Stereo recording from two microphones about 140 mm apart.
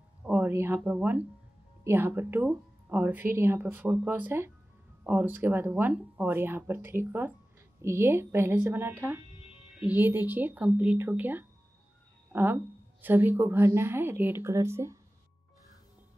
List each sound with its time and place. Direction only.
0.2 s a woman's voice: 10° right (ahead or behind)